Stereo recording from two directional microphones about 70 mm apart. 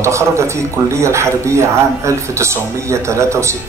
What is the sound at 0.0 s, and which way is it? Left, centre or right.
A man's voice, right.